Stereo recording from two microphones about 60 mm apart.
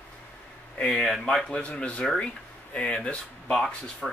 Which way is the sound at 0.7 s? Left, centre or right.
Centre.